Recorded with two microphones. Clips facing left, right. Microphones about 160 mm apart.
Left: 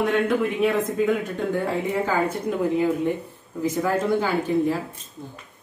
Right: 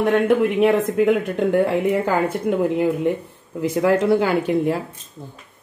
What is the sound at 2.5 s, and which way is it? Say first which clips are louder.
Speech: right 5 dB; 65° right (ahead or behind).